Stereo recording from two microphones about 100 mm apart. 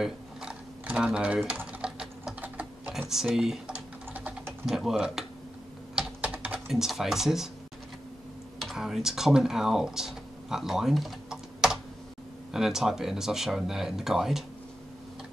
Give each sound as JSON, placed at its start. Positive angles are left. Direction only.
{"t": 0.0, "sound": "mechanisms", "side_deg": -10}
{"t": 1.6, "sound": "typing", "side_deg": -10}
{"t": 4.6, "sound": "speech", "side_deg": -5}
{"t": 5.9, "sound": "typing", "side_deg": -10}
{"t": 8.5, "sound": "speech", "side_deg": 0}